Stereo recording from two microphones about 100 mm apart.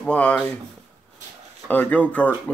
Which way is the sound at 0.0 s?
10° left (ahead or behind).